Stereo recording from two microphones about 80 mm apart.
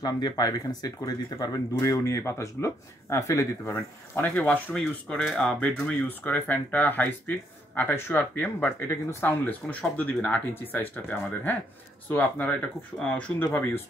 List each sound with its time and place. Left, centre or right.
0.0 s speech: left
3.7 s speech: left
4.7 s speech: centre; by 13.8 s left